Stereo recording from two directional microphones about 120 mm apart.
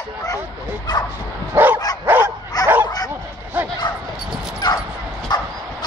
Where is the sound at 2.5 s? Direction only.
35° left (ahead or behind).